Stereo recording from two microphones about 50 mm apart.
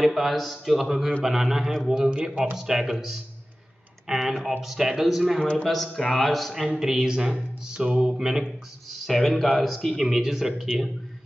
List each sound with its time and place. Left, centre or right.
0.0 s a man's voice: centre
2.5 s speech: centre
4.4 s a man's voice: centre
5.4 s a man's voice: centre
5.7 s a man's voice: centre
9.0 s a man's voice: centre